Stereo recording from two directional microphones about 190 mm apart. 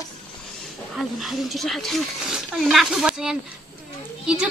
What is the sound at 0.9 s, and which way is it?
Speech, centre (ahead or behind).